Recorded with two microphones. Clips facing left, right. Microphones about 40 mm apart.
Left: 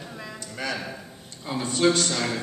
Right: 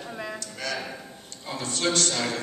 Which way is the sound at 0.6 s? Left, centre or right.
Centre.